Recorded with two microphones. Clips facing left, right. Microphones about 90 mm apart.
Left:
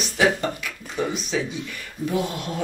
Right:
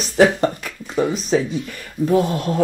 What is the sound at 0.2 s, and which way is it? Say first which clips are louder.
Speech: right 6 dB; 40° right (ahead or behind).